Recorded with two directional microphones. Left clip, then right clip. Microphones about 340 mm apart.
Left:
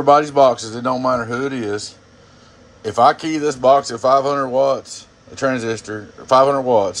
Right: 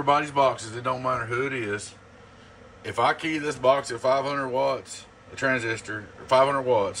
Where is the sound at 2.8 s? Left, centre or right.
Centre.